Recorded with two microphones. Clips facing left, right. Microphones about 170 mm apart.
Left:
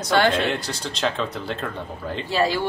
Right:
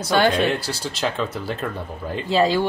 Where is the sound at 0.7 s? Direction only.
5° right (ahead or behind).